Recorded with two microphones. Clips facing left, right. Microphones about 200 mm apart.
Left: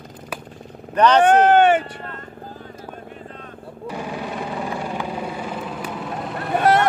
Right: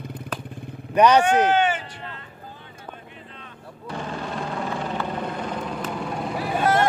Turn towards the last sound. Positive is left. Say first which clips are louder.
# left 2 dB
turn(degrees=0)  # may be behind; listen again after turning